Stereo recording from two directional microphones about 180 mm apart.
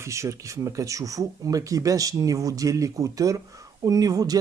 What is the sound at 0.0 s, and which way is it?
Speech, 15° right (ahead or behind).